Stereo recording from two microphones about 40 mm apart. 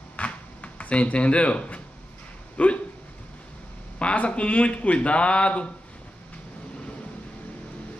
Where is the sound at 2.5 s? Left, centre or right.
Left.